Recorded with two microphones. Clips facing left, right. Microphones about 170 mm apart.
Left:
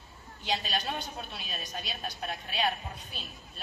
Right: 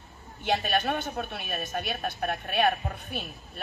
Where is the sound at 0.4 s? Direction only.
55° right (ahead or behind).